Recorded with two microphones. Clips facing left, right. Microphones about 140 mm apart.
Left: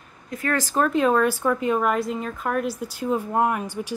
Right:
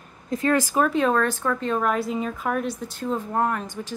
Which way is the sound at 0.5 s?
10° right (ahead or behind).